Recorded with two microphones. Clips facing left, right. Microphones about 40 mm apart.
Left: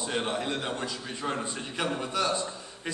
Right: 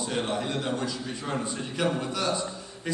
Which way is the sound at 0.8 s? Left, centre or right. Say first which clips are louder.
Right 1 dB; centre.